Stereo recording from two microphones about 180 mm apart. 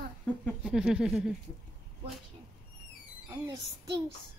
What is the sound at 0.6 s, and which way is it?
Speech, 5° right (ahead or behind).